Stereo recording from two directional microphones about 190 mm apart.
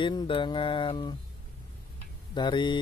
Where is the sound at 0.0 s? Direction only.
25° left (ahead or behind).